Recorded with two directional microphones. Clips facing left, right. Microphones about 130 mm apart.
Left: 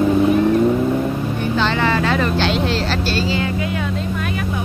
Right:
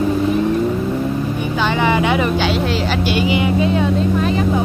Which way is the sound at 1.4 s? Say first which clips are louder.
Left 1 dB; 10° right (ahead or behind).